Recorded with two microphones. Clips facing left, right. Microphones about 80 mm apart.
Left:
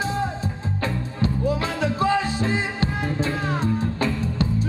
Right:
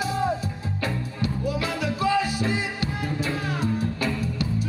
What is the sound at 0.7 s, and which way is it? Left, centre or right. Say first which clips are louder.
Music: left 2 dB; left.